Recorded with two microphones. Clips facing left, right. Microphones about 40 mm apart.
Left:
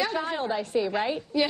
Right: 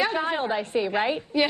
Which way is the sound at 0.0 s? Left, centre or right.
Right.